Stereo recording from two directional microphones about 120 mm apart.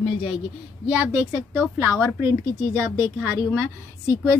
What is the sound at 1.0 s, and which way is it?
A woman's voice, 20° right (ahead or behind).